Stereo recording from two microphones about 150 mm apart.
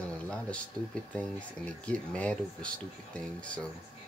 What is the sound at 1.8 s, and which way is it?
Speech, 10° left (ahead or behind).